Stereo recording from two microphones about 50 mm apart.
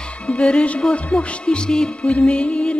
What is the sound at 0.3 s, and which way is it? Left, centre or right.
Music, left.